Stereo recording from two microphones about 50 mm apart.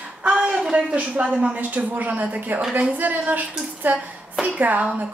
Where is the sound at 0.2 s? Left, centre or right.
Centre.